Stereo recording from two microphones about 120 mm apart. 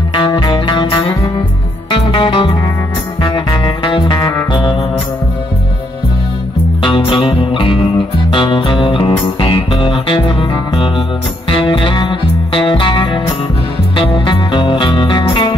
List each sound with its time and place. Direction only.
0.1 s music: 40° left (ahead or behind)
2.0 s music: 45° left (ahead or behind)
6.8 s music: 45° left (ahead or behind)
11.5 s music: 45° left (ahead or behind)